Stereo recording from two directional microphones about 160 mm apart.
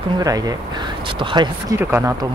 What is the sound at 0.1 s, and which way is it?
Speech, 25° right (ahead or behind).